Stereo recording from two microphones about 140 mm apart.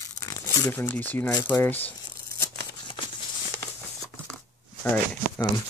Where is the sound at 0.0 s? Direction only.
25° left (ahead or behind).